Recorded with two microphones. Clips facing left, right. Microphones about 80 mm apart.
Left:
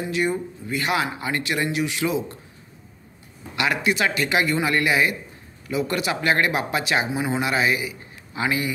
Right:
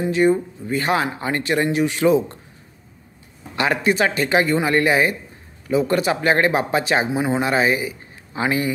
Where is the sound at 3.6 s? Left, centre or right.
Right.